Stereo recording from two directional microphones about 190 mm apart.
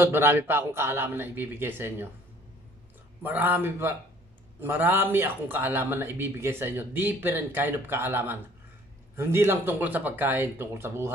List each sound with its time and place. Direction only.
0.0 s speech: 10° right (ahead or behind)
3.2 s speech: 10° right (ahead or behind)